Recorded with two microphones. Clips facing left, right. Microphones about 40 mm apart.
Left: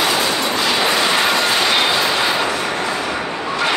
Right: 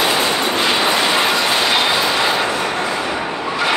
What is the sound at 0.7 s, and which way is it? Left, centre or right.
Train, centre.